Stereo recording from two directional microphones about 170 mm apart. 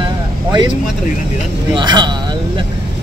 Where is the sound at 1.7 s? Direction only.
25° right (ahead or behind).